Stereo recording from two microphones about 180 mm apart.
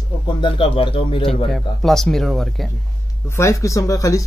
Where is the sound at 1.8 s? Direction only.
Centre (ahead or behind).